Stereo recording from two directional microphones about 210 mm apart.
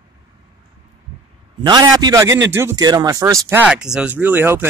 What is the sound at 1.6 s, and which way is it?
Speech, 20° right (ahead or behind).